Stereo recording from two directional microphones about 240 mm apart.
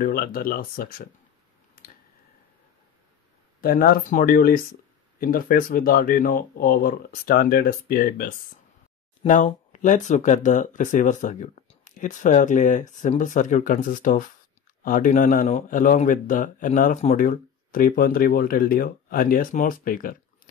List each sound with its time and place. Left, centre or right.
0.0 s speech: left
3.6 s speech: left